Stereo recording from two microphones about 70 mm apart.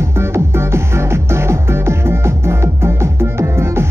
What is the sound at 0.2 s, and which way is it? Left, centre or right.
Music, right.